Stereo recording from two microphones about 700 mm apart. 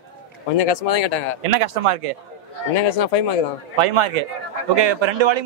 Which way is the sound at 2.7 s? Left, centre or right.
Left.